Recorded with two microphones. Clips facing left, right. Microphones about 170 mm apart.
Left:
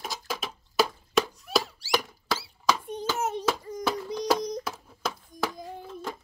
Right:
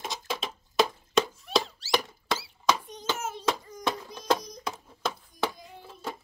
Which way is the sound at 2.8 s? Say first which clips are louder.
Left 9 dB; 55° left (ahead or behind).